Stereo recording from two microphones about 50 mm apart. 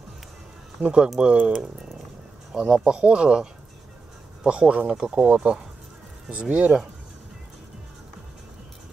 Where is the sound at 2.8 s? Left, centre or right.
Centre.